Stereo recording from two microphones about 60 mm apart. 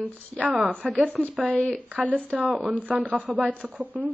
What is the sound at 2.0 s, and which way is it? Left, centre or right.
Speech, right.